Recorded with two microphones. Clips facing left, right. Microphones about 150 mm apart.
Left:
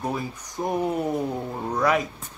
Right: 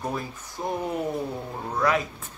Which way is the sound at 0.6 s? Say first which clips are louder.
Left 3 dB; 20° left (ahead or behind).